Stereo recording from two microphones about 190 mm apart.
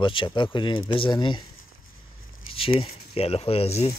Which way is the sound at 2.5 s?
30° left (ahead or behind).